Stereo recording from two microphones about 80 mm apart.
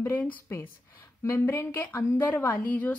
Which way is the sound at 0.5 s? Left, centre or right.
Left.